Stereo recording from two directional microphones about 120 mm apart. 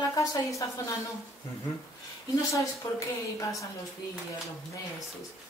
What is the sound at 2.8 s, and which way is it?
Speech, 30° left (ahead or behind).